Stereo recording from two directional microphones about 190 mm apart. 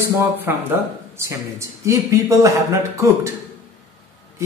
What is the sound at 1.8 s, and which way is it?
A man's voice, 15° right (ahead or behind).